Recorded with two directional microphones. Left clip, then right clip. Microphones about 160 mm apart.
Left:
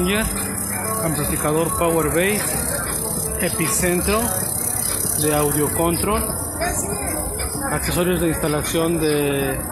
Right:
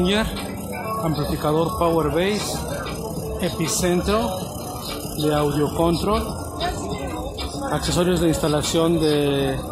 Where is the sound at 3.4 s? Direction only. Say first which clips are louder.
Left 2 dB; 10° right (ahead or behind).